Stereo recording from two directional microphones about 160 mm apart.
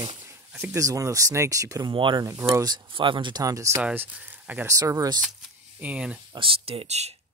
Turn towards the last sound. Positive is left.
turn(degrees=-40)  # may be behind; listen again after turning